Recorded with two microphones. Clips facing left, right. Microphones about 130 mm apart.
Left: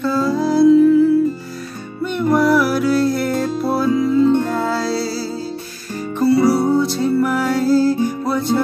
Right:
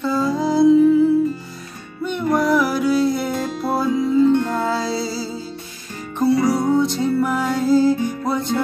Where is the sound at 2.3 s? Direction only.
10° left (ahead or behind).